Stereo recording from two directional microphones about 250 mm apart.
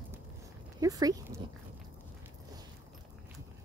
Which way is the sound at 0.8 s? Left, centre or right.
Centre.